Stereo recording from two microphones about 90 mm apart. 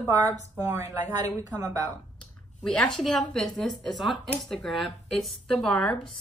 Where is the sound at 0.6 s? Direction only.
35° right (ahead or behind).